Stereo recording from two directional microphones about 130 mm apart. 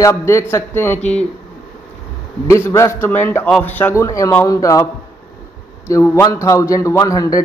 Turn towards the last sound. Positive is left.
turn(degrees=25)  # may be behind; listen again after turning